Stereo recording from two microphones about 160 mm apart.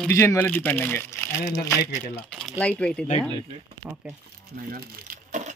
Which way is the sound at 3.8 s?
5° right (ahead or behind).